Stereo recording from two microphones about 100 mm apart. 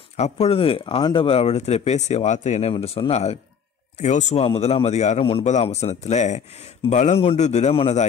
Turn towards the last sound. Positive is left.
turn(degrees=85)